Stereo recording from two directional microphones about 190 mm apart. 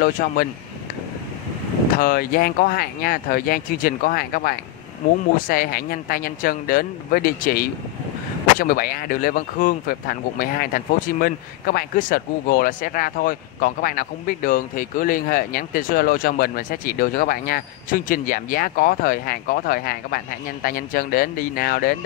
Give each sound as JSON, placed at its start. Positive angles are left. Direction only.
{"t": 0.0, "sound": "speech", "side_deg": 50}
{"t": 2.0, "sound": "speech", "side_deg": 50}